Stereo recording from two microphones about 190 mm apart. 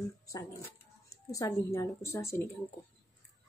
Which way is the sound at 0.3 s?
15° left (ahead or behind).